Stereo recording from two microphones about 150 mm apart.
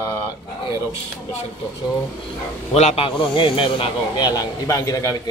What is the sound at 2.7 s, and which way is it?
A man's voice, 45° left (ahead or behind).